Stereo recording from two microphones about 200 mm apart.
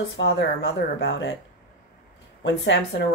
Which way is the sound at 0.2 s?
60° left (ahead or behind).